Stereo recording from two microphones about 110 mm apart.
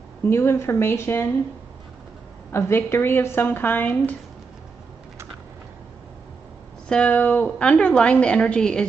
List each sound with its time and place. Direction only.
0.2 s speech: 25° left (ahead or behind)
2.5 s speech: 20° left (ahead or behind)
6.9 s a woman's voice: 10° left (ahead or behind)